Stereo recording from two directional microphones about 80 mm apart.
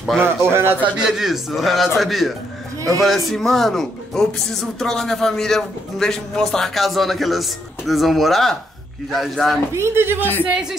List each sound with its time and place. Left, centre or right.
0.2 s speech: right
0.9 s a man's voice: centre
9.8 s speech: right
10.4 s speech: centre